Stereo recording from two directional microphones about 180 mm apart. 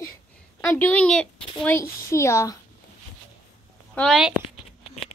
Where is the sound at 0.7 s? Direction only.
10° left (ahead or behind).